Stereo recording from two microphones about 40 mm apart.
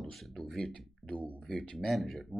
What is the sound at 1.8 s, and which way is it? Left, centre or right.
Speech, centre.